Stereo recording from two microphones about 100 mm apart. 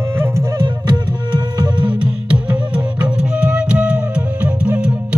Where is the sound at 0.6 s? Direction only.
50° right (ahead or behind).